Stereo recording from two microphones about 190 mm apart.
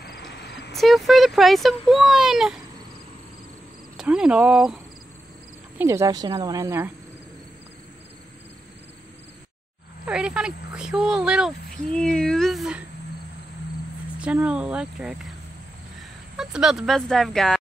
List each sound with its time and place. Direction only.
0.0 s a sound: 60° left (ahead or behind)
0.7 s speech: centre (ahead or behind)
3.9 s speech: 5° right (ahead or behind)
5.8 s speech: 15° right (ahead or behind)
10.0 s speech: 5° right (ahead or behind)
14.2 s speech: 5° right (ahead or behind)